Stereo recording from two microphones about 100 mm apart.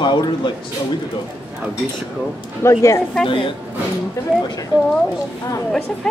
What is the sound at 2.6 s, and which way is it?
Speech, 30° left (ahead or behind).